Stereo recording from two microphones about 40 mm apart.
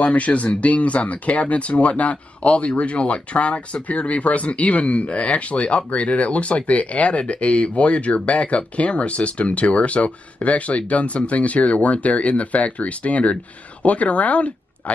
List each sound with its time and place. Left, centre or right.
0.0 s speech: left